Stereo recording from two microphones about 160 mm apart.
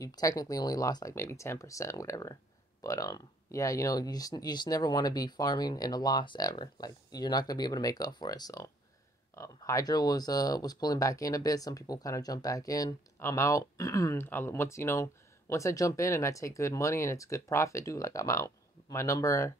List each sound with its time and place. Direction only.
0.0 s speech: 20° left (ahead or behind)